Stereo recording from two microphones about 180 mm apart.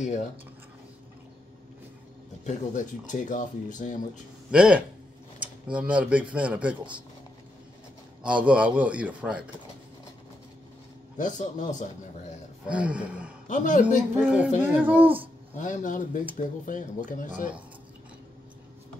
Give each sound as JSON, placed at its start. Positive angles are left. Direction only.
{"t": 2.4, "sound": "speech", "side_deg": 45}
{"t": 4.5, "sound": "speech", "side_deg": -5}
{"t": 8.2, "sound": "speech", "side_deg": -5}
{"t": 11.1, "sound": "speech", "side_deg": 45}
{"t": 12.6, "sound": "speech", "side_deg": -5}
{"t": 13.5, "sound": "speech", "side_deg": 45}
{"t": 14.1, "sound": "speech", "side_deg": -5}
{"t": 15.5, "sound": "speech", "side_deg": 45}